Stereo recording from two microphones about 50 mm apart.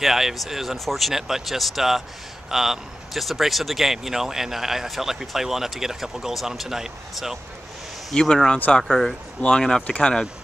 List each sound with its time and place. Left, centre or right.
0.0 s speech: centre
8.1 s speech: centre
9.4 s speech: centre